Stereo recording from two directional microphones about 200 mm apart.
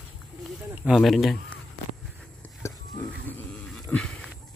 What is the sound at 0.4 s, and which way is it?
Speech, 5° right (ahead or behind).